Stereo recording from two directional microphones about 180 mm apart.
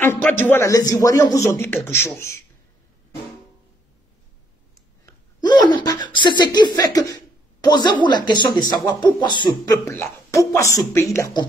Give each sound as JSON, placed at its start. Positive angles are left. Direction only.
{"t": 0.0, "sound": "a man's voice", "side_deg": 10}
{"t": 5.0, "sound": "a sound", "side_deg": 25}
{"t": 7.6, "sound": "speech", "side_deg": 25}